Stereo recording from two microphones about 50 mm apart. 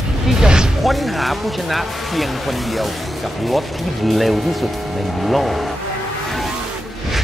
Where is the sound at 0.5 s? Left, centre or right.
Centre.